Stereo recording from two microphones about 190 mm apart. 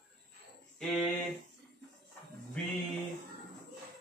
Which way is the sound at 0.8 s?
Centre (ahead or behind).